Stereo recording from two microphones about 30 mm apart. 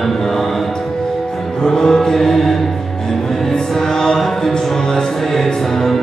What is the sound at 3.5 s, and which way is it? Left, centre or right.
Music, left.